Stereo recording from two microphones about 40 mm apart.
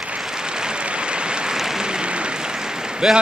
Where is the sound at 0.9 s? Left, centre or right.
Right.